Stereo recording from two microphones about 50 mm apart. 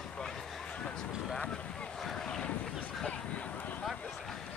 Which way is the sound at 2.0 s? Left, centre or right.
Centre.